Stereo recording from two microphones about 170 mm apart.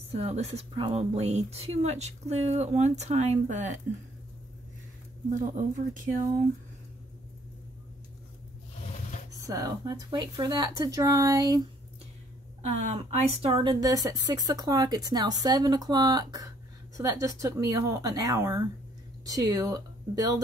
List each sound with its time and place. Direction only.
0.1 s a woman's voice: 40° right (ahead or behind)
5.3 s speech: 50° right (ahead or behind)
9.3 s speech: 20° right (ahead or behind)
12.6 s speech: 40° right (ahead or behind); by 20.4 s 20° right (ahead or behind)